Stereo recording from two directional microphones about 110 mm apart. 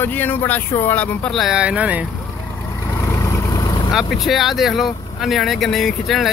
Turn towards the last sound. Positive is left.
turn(degrees=0)  # may be behind; listen again after turning